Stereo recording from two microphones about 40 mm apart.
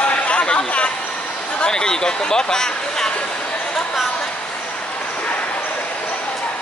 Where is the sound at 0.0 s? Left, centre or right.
Left.